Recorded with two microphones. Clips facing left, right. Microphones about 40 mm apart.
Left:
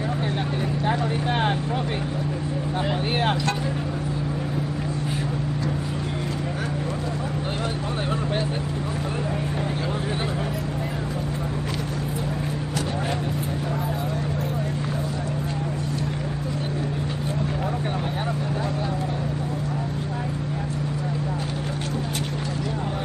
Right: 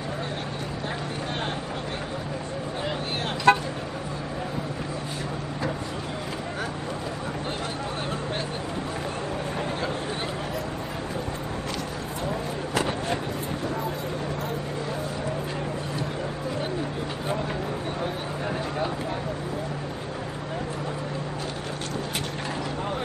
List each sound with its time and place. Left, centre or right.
0.8 s speech: left
3.5 s speech: right